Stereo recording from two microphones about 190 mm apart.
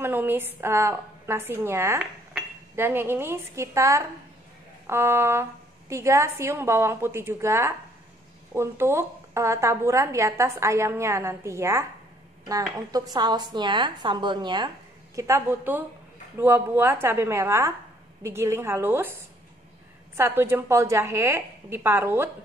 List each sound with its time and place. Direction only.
0.0 s a woman's voice: 10° right (ahead or behind)
12.9 s a woman's voice: 20° right (ahead or behind)
20.2 s a woman's voice: 10° right (ahead or behind)